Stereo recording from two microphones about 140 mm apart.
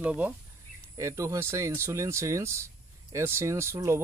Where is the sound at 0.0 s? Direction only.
10° right (ahead or behind).